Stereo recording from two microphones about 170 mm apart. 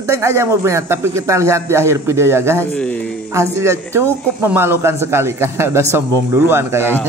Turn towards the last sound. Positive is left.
turn(degrees=-15)  # may be behind; listen again after turning